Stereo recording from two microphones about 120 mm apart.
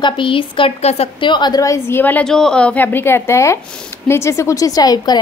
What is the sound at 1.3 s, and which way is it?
A woman's voice, 35° left (ahead or behind).